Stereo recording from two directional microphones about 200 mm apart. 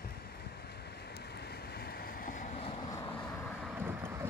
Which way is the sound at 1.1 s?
55° left (ahead or behind).